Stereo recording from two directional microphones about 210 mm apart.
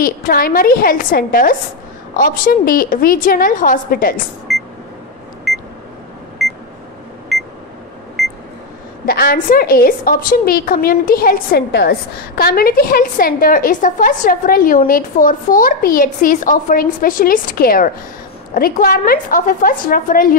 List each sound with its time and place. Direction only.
0.0 s a woman's voice: 45° left (ahead or behind)
4.5 s beep: centre (ahead or behind)
9.0 s a woman's voice: 45° left (ahead or behind)